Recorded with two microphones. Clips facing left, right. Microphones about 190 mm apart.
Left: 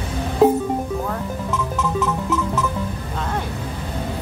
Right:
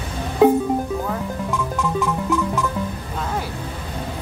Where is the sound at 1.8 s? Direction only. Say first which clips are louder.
Even; centre (ahead or behind).